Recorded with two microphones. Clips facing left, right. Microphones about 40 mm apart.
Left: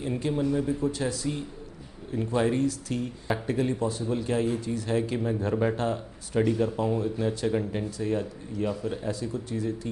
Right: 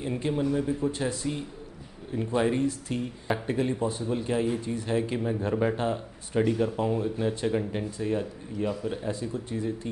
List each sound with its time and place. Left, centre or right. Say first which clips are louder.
0.3 s speech: even; centre
0.8 s speech: even; right
2.1 s speech: even; centre
5.1 s speech: even; centre
9.1 s speech: even; right